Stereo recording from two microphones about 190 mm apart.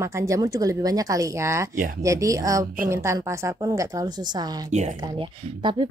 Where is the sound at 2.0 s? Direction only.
15° right (ahead or behind).